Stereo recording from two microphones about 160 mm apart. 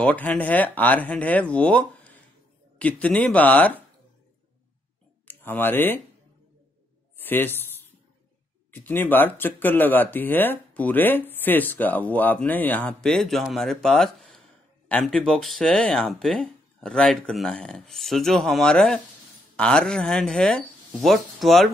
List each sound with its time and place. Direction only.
0.0 s speech: 10° left (ahead or behind)
5.3 s speech: 10° left (ahead or behind)
7.2 s speech: 10° left (ahead or behind)
8.7 s speech: 10° left (ahead or behind)